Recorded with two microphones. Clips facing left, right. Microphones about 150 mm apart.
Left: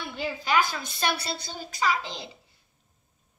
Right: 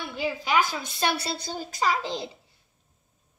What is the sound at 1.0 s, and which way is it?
Speech, 35° right (ahead or behind).